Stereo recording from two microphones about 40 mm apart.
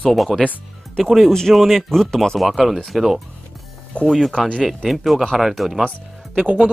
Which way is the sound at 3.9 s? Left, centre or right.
Left.